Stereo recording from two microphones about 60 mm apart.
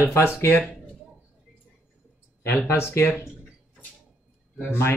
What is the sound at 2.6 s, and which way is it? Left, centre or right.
Speech, left.